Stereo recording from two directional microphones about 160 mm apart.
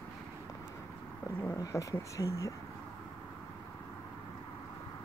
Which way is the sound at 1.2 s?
20° left (ahead or behind).